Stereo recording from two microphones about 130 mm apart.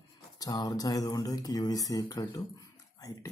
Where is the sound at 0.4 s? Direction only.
30° left (ahead or behind).